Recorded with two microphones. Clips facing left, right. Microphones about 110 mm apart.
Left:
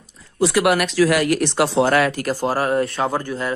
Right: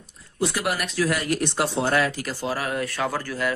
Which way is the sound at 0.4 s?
90° left.